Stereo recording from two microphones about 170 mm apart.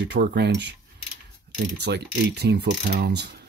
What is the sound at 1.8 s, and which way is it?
Speech, 75° right (ahead or behind).